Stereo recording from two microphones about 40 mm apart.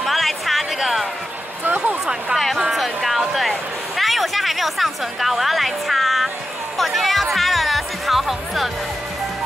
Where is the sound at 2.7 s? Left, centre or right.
Centre.